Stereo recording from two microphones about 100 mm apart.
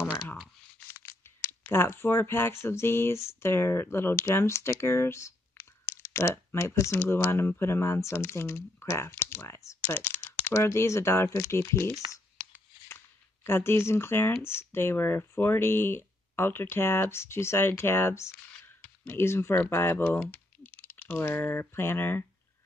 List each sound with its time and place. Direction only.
0.0 s shuffling cards: 5° right (ahead or behind)
1.7 s speech: 25° left (ahead or behind)
12.8 s shuffling cards: 25° left (ahead or behind)
14.4 s speech: 25° left (ahead or behind)